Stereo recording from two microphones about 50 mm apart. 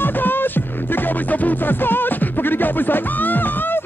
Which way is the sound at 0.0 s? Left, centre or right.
Left.